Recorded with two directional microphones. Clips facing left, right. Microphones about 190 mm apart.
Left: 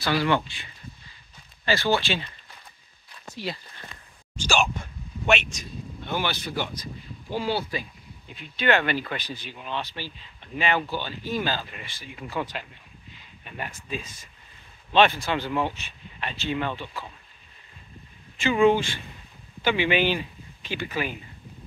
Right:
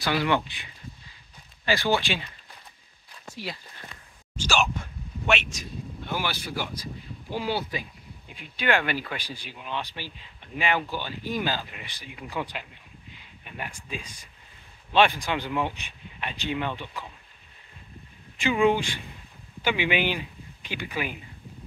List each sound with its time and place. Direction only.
0.0 s speech: 15° right (ahead or behind)
1.7 s speech: 15° right (ahead or behind)
5.2 s speech: centre (ahead or behind)
18.4 s speech: 15° right (ahead or behind)